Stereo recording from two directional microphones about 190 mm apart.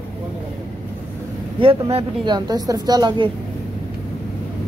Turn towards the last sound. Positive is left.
turn(degrees=-20)  # may be behind; listen again after turning